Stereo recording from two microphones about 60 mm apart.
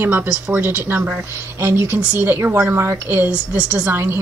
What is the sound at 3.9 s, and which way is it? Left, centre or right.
Speech, right.